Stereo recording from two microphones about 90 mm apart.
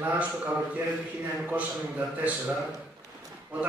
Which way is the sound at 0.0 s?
15° right (ahead or behind).